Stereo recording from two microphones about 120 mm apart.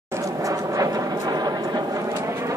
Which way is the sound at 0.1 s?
25° right (ahead or behind).